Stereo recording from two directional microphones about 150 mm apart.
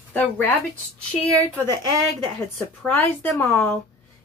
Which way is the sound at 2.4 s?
10° left (ahead or behind).